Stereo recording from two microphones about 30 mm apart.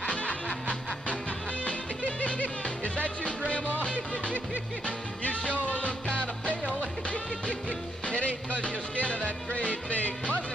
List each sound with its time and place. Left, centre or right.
0.0 s music: left
1.6 s music: left
5.5 s music: left